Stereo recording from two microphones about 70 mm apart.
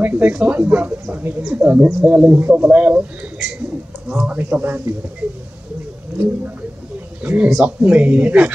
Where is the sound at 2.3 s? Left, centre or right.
Right.